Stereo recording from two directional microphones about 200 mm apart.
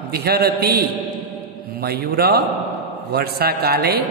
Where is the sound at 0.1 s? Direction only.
50° right (ahead or behind).